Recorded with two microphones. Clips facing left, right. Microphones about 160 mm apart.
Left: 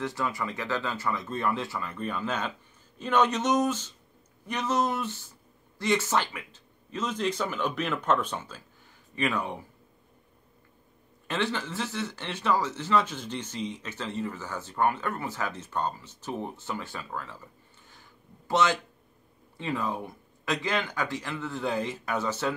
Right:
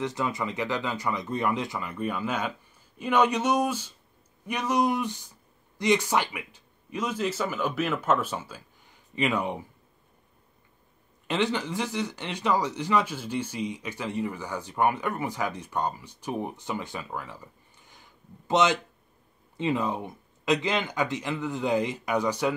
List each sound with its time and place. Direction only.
0.0 s speech: 20° right (ahead or behind)
11.2 s speech: 15° right (ahead or behind)